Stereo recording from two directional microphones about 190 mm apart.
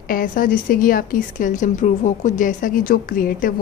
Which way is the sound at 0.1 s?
45° left (ahead or behind).